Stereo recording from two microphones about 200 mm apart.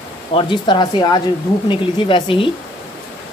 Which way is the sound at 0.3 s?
25° left (ahead or behind).